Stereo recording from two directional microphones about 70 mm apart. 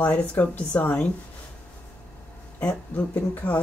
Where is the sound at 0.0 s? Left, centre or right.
Centre.